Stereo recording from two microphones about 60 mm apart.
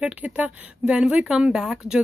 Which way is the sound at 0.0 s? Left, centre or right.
Right.